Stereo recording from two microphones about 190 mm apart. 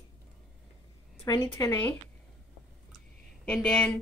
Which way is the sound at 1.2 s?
15° left (ahead or behind).